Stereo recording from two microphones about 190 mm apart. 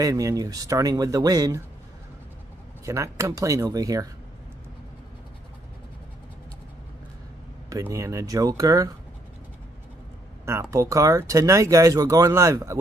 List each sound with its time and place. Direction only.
0.0 s speech: 15° right (ahead or behind)
2.8 s speech: 15° right (ahead or behind)
7.7 s speech: 15° right (ahead or behind)
10.4 s speech: 15° right (ahead or behind)